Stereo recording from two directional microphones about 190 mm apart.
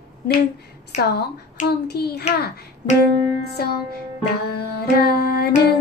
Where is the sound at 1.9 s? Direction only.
60° left (ahead or behind).